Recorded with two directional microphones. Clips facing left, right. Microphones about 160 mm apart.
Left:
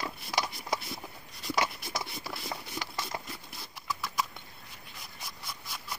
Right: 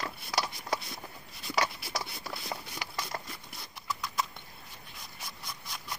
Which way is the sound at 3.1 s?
10° left (ahead or behind).